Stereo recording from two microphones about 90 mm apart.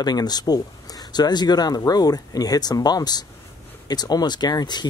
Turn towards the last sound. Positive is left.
turn(degrees=50)  # may be behind; listen again after turning